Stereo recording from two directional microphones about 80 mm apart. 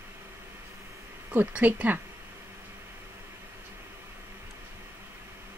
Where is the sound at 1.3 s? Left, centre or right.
Centre.